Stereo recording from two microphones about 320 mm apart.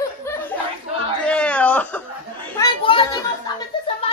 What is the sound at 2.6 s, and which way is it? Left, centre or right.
Children playing, centre.